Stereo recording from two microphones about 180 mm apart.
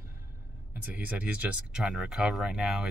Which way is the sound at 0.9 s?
10° right (ahead or behind).